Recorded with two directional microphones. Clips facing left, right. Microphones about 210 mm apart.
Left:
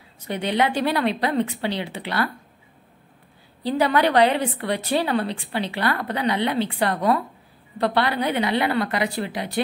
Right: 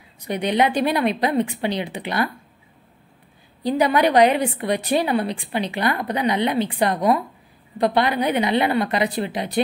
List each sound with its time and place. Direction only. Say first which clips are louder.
0.2 s a woman's voice: right 2 dB; 15° right (ahead or behind)
3.6 s a woman's voice: right 2 dB; 15° right (ahead or behind)